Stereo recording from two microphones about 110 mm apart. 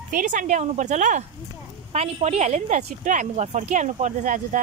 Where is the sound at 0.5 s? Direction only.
90° right.